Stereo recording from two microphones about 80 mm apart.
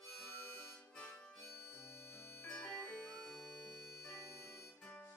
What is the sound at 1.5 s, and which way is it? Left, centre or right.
Bagpipes, left.